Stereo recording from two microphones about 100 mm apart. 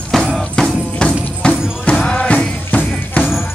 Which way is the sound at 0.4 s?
10° left (ahead or behind).